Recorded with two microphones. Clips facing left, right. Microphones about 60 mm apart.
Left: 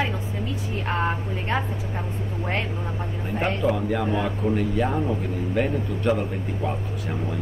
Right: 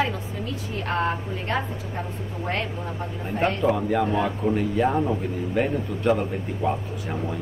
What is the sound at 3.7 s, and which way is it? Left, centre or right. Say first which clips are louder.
Speech: right 2 dB; centre.